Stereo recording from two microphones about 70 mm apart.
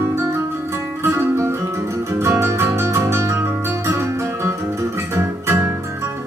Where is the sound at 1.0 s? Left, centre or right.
Right.